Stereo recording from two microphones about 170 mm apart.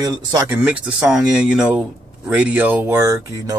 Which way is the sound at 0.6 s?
5° right (ahead or behind).